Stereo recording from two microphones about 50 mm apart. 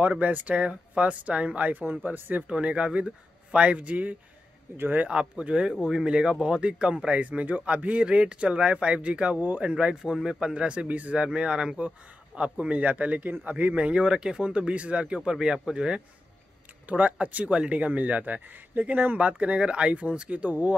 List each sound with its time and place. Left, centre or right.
0.1 s speech: right
4.7 s speech: right
5.0 s speech: right
9.4 s speech: right
9.7 s speech: right
13.8 s speech: centre